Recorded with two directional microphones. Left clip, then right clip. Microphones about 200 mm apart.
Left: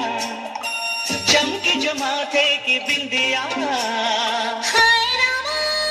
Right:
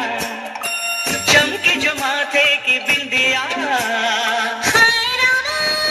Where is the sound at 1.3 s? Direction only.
20° right (ahead or behind).